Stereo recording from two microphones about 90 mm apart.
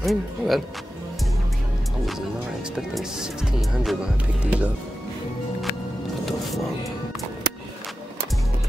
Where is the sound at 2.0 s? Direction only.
5° right (ahead or behind).